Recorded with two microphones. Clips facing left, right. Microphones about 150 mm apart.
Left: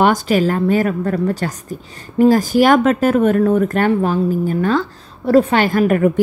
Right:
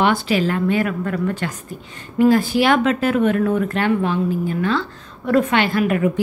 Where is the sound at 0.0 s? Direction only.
45° left (ahead or behind).